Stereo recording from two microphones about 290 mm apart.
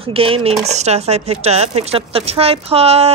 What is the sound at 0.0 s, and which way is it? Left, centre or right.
A woman's voice, centre.